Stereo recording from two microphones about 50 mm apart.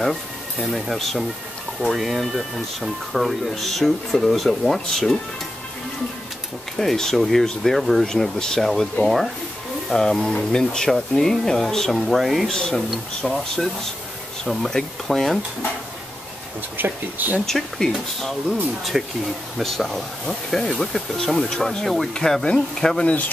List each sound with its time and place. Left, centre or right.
0.0 s speech: centre
6.8 s speech: centre
12.4 s speech: centre
14.5 s speech: centre
16.7 s speech: right
17.5 s speech: centre
18.9 s speech: centre
20.2 s speech: centre